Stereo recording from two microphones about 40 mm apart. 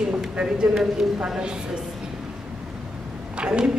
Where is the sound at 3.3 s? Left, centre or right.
Right.